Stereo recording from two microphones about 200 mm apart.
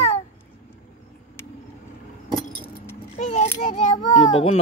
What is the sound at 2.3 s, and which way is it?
Keys jangling, 10° left (ahead or behind).